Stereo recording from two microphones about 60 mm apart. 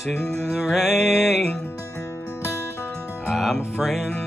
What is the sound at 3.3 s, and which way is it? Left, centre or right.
Speech, centre.